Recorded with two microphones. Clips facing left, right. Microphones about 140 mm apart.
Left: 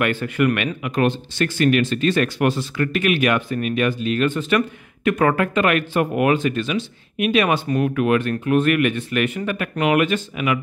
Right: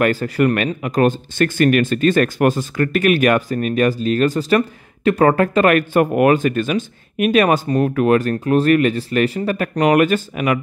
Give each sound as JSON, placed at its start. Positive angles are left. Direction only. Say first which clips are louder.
{"t": 0.0, "sound": "speech", "louder": "right 3 dB", "side_deg": -40}